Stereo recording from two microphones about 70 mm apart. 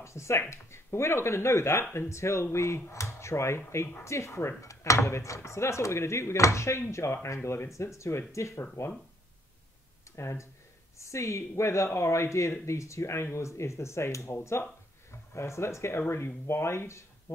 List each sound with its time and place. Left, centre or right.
0.0 s speech: left
10.1 s speech: left